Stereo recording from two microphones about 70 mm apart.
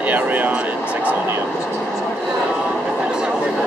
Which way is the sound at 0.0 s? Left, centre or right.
Right.